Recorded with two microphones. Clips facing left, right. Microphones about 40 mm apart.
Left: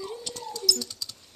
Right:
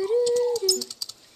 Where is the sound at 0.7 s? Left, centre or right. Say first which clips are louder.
Right 4 dB; centre.